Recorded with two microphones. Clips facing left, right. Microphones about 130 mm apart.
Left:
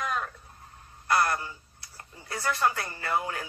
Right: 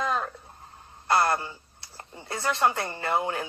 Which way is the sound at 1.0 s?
25° right (ahead or behind).